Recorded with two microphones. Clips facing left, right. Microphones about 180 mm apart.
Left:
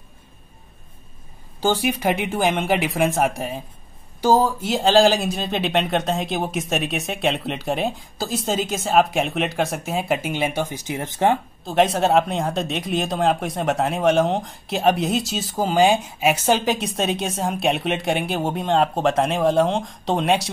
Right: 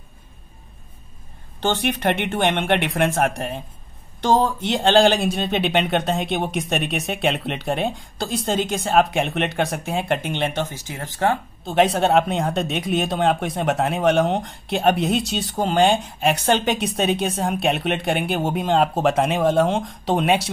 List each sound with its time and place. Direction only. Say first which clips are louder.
1.6 s speech: left 1 dB; 5° left (ahead or behind)
11.6 s speech: right 1 dB; centre (ahead or behind)